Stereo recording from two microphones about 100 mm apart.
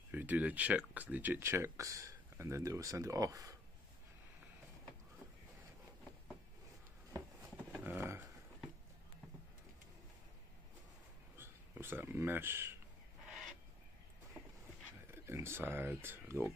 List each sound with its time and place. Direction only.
0.1 s speech: 20° right (ahead or behind); by 3.5 s 35° right (ahead or behind)
7.7 s a sound: 20° right (ahead or behind)
11.3 s speech: 25° right (ahead or behind)
15.0 s speech: 25° right (ahead or behind)